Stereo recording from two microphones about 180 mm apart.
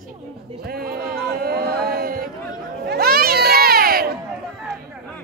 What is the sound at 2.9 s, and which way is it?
Crowd, 55° right (ahead or behind).